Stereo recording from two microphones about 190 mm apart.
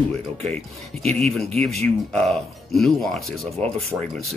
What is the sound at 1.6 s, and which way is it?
Speech, 5° left (ahead or behind).